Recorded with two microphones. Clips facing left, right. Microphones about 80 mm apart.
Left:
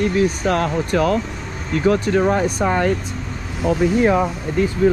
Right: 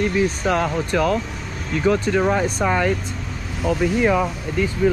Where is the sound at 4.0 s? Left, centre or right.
Left.